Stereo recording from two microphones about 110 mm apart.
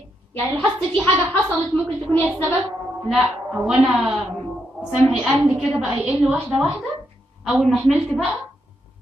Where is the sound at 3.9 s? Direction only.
15° right (ahead or behind).